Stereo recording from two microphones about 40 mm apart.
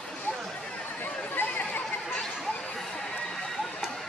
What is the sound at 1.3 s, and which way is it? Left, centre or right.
Chatter, left.